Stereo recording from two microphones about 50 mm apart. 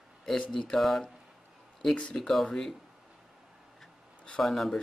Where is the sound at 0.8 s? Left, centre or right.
Centre.